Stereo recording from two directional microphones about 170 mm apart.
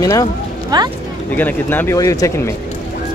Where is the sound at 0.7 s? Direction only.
25° right (ahead or behind).